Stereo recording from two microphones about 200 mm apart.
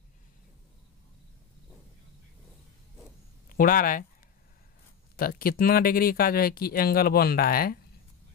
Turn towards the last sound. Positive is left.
turn(degrees=45)  # may be behind; listen again after turning